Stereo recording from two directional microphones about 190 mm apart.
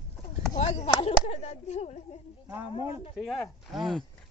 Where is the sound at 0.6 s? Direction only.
35° left (ahead or behind).